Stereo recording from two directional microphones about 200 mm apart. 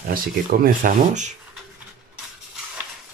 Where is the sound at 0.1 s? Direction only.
45° right (ahead or behind).